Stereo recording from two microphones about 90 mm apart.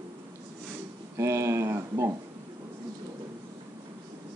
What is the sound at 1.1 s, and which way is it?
Speech, 30° right (ahead or behind).